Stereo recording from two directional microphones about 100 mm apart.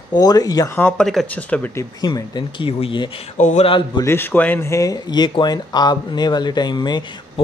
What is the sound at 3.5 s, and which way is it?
Speech, 70° left (ahead or behind).